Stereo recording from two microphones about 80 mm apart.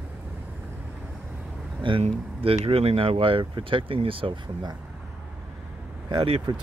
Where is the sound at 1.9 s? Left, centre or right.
Right.